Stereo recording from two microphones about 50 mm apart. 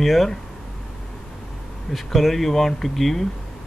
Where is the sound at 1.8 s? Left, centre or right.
Centre.